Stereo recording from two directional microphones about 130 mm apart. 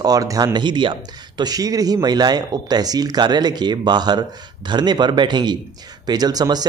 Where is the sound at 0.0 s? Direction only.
30° right (ahead or behind).